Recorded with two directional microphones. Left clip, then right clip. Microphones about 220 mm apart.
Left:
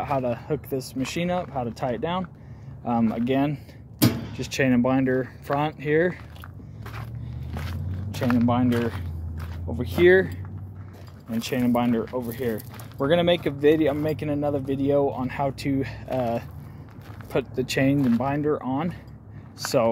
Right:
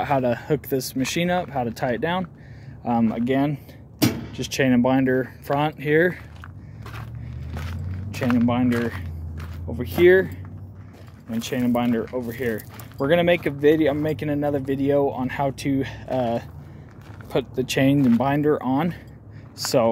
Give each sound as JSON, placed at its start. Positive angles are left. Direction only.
{"t": 0.0, "sound": "speech", "side_deg": -35}
{"t": 8.3, "sound": "speech", "side_deg": 0}
{"t": 17.9, "sound": "speech", "side_deg": 5}
{"t": 18.2, "sound": "speech", "side_deg": -30}